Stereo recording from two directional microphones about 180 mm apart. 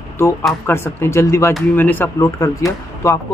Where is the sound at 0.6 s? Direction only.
15° left (ahead or behind).